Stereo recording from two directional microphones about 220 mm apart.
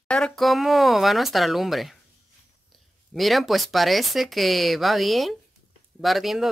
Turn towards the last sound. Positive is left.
turn(degrees=0)  # may be behind; listen again after turning